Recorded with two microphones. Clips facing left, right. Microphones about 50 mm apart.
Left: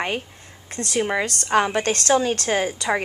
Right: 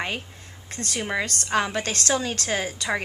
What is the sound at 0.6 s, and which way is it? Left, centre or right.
A woman's voice, left.